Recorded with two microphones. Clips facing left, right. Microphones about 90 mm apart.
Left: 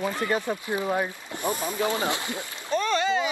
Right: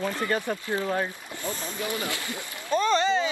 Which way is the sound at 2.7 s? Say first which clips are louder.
Right 1 dB; centre (ahead or behind).